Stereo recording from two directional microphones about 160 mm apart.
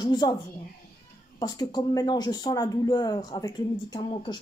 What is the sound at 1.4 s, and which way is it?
A woman's voice, 25° left (ahead or behind).